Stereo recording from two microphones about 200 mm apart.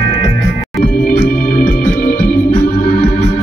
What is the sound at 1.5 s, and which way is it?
Organ, 45° left (ahead or behind).